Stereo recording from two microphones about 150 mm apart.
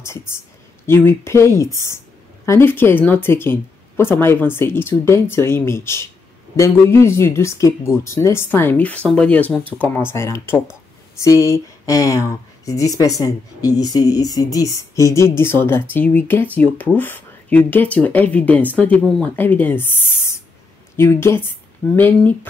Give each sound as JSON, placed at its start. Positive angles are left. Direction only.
{"t": 0.8, "sound": "speech", "side_deg": 15}